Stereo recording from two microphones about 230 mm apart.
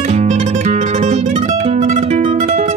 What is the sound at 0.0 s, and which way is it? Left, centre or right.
Music, right.